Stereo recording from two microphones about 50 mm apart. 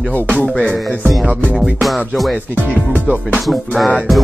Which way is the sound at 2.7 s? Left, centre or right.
Left.